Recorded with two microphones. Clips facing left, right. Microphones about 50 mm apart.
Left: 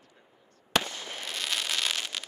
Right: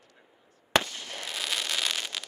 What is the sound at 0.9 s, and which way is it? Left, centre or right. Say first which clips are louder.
Fireworks: left 2 dB; left.